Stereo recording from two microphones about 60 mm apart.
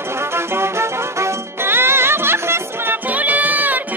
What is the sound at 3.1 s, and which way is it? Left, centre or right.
Music, right.